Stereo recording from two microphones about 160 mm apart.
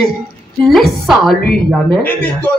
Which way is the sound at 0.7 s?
Centre (ahead or behind).